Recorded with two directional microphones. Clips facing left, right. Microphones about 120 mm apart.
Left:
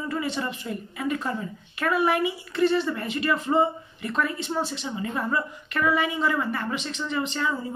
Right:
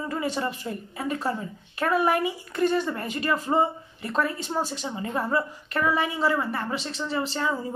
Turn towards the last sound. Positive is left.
turn(degrees=-35)  # may be behind; listen again after turning